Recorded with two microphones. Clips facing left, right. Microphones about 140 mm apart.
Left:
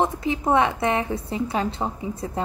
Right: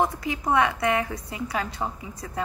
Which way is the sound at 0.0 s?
25° left (ahead or behind).